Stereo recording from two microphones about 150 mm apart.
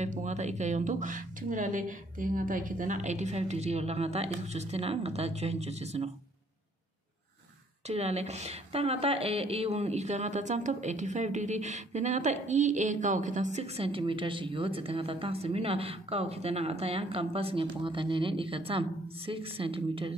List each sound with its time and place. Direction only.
0.0 s a woman's voice: 50° right (ahead or behind)
7.8 s a woman's voice: 45° right (ahead or behind)